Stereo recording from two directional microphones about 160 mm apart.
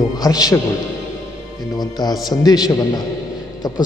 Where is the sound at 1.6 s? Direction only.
25° left (ahead or behind).